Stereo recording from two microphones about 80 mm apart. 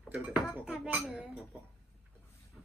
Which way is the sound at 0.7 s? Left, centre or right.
Centre.